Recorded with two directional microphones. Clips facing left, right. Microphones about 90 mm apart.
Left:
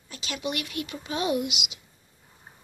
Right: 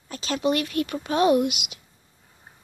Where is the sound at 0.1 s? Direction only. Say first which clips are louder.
Right 8 dB; 40° right (ahead or behind).